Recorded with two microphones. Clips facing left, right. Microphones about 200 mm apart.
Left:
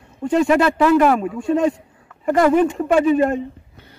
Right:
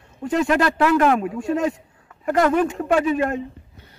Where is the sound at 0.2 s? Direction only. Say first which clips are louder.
Left 4 dB; 5° right (ahead or behind).